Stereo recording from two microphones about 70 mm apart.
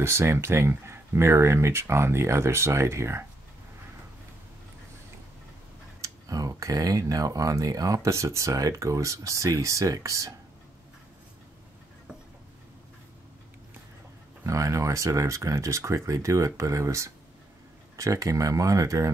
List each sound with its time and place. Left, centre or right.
0.0 s speech: right
5.9 s speech: right
14.4 s speech: right